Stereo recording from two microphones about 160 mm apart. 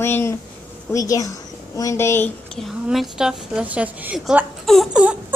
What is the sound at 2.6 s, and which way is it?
A woman's voice, centre (ahead or behind).